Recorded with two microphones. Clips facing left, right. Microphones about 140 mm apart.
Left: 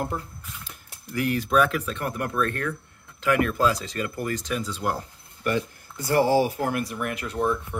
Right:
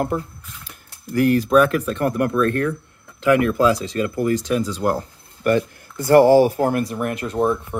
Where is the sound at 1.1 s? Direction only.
40° right (ahead or behind).